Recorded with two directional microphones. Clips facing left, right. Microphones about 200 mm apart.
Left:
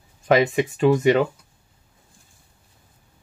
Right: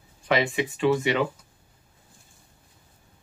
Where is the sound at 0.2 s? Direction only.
45° left (ahead or behind).